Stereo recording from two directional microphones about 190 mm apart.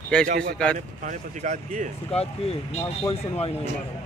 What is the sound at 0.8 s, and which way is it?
Speech, 40° right (ahead or behind).